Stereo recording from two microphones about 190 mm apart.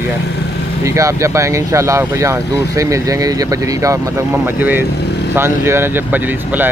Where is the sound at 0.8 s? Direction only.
15° right (ahead or behind).